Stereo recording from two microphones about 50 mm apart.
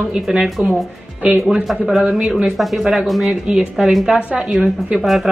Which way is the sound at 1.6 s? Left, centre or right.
Centre.